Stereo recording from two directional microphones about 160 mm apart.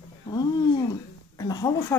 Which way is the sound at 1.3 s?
25° left (ahead or behind).